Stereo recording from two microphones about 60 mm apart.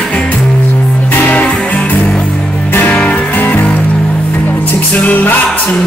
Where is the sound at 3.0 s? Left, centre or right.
Left.